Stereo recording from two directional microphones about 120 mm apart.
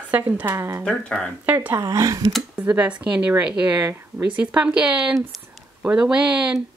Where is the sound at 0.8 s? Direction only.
5° left (ahead or behind).